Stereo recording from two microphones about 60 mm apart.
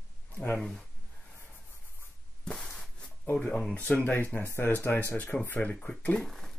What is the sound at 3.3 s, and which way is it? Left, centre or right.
Speech, centre.